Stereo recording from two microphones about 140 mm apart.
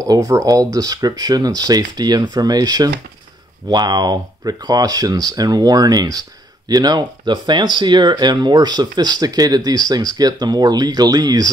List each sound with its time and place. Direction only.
0.0 s speech: 25° right (ahead or behind)